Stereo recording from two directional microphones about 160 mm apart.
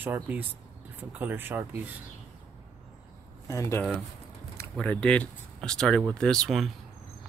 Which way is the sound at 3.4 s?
20° left (ahead or behind).